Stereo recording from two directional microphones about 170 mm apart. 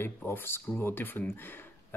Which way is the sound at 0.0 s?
15° left (ahead or behind).